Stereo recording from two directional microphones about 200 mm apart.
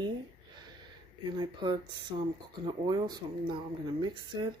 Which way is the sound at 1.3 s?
20° right (ahead or behind).